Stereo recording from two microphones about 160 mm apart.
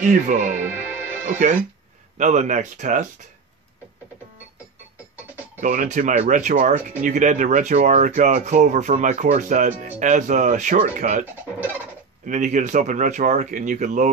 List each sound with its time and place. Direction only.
0.0 s speech: 50° right (ahead or behind)
0.7 s music: 15° right (ahead or behind)
2.1 s speech: 50° right (ahead or behind)
5.6 s speech: 55° right (ahead or behind)
12.3 s speech: 50° right (ahead or behind)